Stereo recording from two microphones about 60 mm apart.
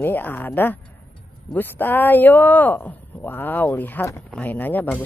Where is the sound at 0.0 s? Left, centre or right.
Left.